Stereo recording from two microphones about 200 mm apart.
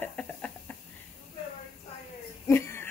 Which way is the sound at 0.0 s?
5° left (ahead or behind).